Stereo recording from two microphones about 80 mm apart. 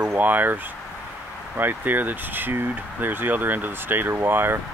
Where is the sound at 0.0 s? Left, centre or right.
Right.